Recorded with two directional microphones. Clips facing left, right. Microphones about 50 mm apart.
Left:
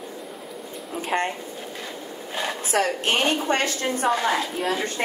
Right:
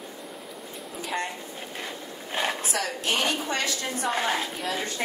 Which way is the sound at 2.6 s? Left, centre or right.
Left.